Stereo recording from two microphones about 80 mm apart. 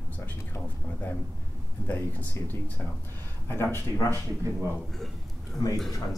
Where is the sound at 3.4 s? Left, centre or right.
Left.